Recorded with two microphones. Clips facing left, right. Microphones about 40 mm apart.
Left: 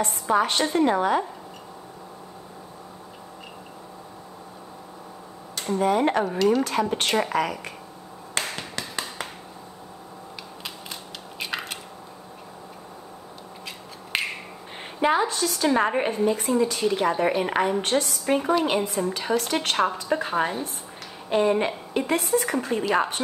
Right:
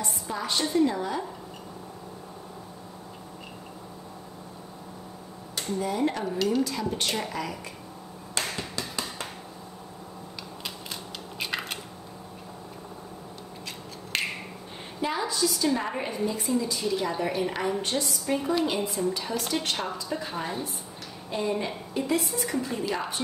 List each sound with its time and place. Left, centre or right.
0.0 s a woman's voice: left
5.8 s a woman's voice: left
8.4 s finger snapping: left
11.3 s a sound: centre
14.1 s finger snapping: centre
15.0 s a woman's voice: left
18.6 s a woman's voice: left
18.9 s a woman's voice: left